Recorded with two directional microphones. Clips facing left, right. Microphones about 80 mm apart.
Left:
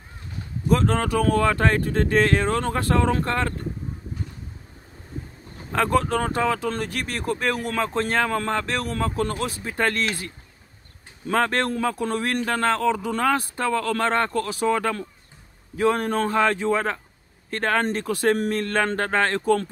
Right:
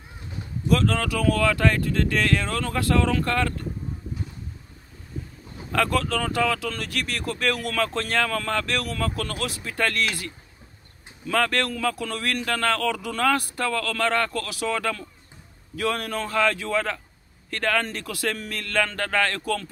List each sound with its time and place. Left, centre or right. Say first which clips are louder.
0.7 s speech: left 2 dB; left
5.7 s speech: left 2 dB; left